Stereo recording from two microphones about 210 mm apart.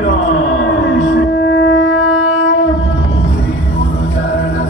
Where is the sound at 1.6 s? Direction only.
65° left (ahead or behind).